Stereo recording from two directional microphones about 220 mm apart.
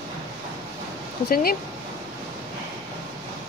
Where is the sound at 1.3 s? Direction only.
40° left (ahead or behind).